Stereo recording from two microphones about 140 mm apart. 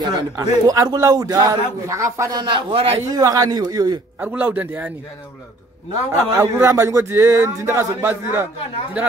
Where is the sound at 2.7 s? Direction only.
40° right (ahead or behind).